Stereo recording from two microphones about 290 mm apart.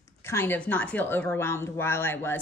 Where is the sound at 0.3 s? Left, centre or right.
Centre.